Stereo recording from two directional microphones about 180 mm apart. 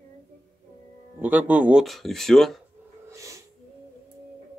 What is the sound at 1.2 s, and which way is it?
Speech, 10° right (ahead or behind).